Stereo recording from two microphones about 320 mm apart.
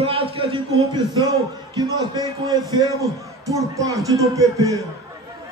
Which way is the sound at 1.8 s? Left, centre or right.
Centre.